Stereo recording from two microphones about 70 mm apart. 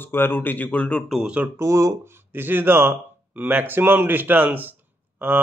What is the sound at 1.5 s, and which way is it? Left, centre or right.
Speech, right.